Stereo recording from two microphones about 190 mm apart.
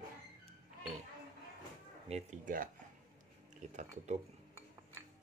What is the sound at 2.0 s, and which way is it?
Speech, 40° right (ahead or behind).